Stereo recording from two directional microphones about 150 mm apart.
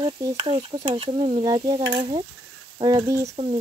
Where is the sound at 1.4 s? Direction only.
30° right (ahead or behind).